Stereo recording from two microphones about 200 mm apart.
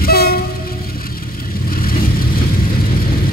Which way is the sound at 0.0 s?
50° left (ahead or behind).